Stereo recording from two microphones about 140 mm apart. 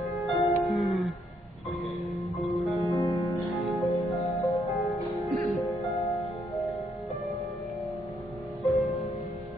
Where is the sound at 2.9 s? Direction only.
25° left (ahead or behind).